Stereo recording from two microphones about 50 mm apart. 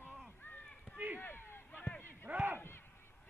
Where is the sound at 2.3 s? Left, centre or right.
Right.